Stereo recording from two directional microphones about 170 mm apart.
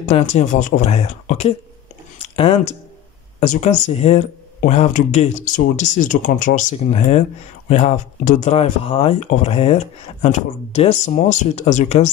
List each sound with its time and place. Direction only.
0.0 s speech: 40° left (ahead or behind)